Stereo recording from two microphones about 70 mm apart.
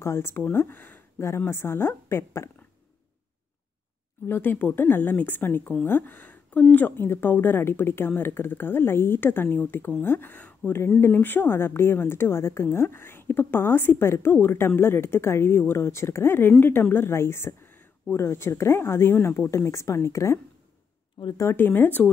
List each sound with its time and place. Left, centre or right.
0.0 s speech: left
1.2 s speech: left
4.3 s a woman's voice: left
21.2 s speech: left
21.5 s a woman's voice: left